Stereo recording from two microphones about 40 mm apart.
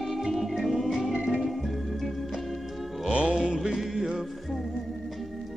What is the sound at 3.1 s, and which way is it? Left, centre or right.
Music, right.